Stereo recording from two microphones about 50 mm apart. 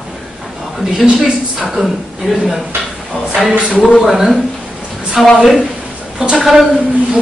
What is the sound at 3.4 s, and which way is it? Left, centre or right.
Speech, right.